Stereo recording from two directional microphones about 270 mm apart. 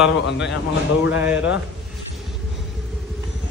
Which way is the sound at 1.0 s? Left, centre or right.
Centre.